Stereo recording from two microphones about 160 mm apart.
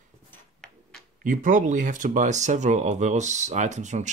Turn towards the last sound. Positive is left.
turn(degrees=-45)  # may be behind; listen again after turning